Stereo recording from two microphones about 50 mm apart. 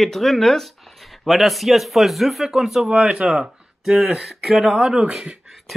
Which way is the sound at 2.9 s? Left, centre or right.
Centre.